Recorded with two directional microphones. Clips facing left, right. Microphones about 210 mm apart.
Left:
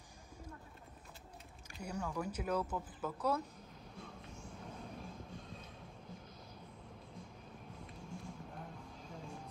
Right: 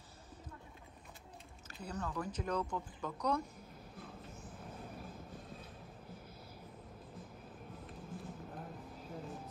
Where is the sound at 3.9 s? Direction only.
5° right (ahead or behind).